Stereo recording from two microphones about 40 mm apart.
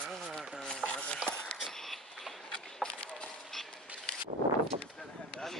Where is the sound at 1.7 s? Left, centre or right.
Centre.